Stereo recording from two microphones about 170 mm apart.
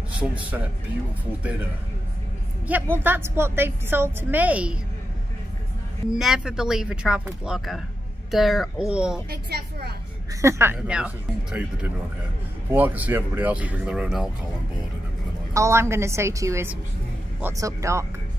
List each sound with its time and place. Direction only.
0.2 s a woman's voice: 10° right (ahead or behind)
2.7 s a woman's voice: 10° right (ahead or behind)
6.1 s speech: 5° right (ahead or behind)
9.3 s a woman's voice: 70° right (ahead or behind)
10.4 s a woman's voice: 15° right (ahead or behind)
15.5 s a woman's voice: 15° right (ahead or behind)